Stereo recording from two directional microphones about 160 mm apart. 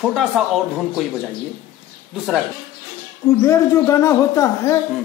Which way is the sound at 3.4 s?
20° left (ahead or behind).